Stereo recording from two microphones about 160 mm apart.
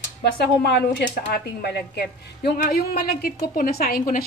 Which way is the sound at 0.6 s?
90° left.